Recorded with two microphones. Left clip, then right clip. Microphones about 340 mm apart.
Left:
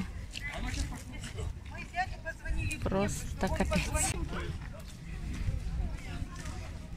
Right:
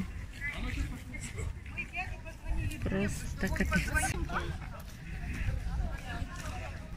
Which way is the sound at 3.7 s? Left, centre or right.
Centre.